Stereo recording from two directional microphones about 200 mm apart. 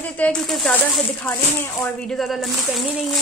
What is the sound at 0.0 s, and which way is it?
Speech, 5° left (ahead or behind).